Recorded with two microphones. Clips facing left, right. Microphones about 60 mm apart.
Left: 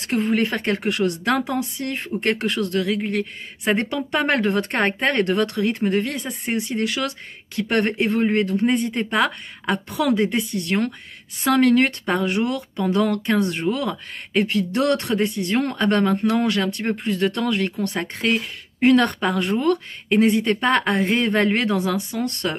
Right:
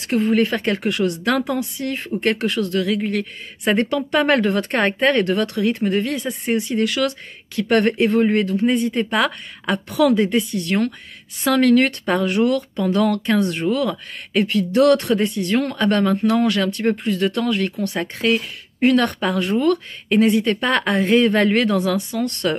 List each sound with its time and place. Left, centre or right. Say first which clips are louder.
0.1 s speech: right 3 dB; left